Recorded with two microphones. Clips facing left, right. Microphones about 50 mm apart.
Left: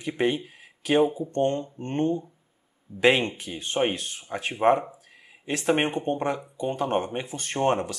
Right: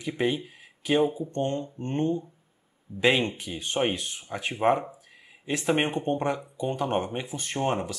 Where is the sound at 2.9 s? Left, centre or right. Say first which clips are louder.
Even; right.